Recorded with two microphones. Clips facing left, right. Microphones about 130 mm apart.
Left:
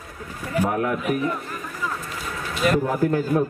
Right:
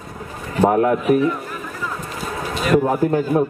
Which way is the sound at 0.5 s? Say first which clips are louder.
Right 7 dB; 35° right (ahead or behind).